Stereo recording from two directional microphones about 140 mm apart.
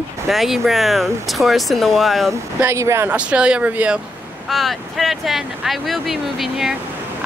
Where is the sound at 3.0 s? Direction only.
10° right (ahead or behind).